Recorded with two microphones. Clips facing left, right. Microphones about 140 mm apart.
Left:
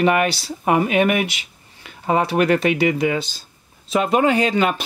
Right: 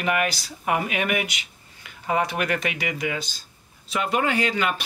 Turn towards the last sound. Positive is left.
turn(degrees=25)  # may be behind; listen again after turning